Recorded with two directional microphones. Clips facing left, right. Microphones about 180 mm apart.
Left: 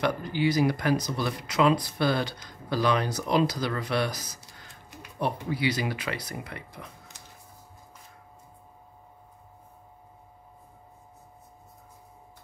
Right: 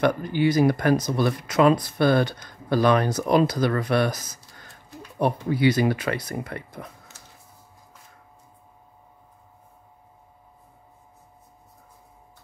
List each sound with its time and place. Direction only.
0.0 s speech: 55° right (ahead or behind)